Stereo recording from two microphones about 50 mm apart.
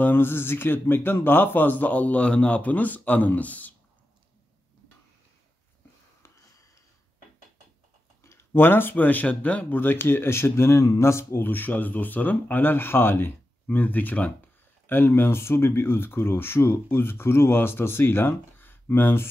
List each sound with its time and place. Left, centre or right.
0.0 s a man's voice: left
8.2 s a sound: left
8.5 s a man's voice: left
9.8 s speech: left
11.3 s a man's voice: left
14.9 s speech: left